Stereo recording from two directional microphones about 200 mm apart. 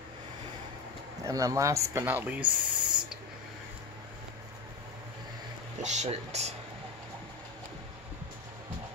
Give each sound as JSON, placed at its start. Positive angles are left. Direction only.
{"t": 1.2, "sound": "speech", "side_deg": -15}
{"t": 2.4, "sound": "snake", "side_deg": -25}
{"t": 5.8, "sound": "speech", "side_deg": -35}